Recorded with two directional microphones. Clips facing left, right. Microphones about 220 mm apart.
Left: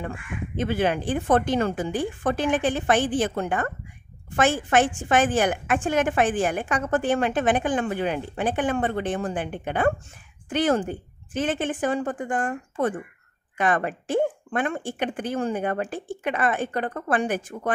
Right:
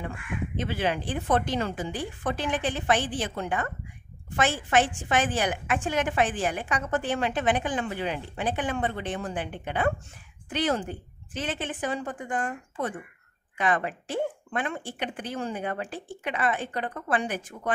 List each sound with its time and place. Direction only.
0.6 s a woman's voice: 50° left (ahead or behind)